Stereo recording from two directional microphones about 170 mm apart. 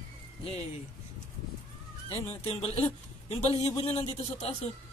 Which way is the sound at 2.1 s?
35° left (ahead or behind).